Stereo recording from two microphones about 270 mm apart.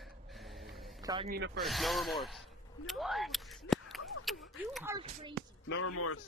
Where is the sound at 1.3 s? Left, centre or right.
Right.